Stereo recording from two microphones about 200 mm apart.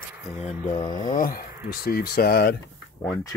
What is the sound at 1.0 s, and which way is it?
Speech, 45° left (ahead or behind).